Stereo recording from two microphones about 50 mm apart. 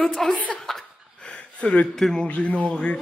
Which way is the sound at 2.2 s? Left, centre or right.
Left.